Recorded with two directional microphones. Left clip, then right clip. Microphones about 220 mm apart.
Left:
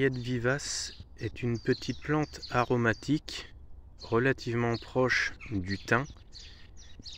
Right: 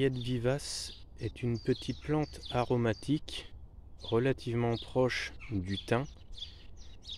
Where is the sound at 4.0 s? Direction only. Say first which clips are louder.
Left 3 dB; centre (ahead or behind).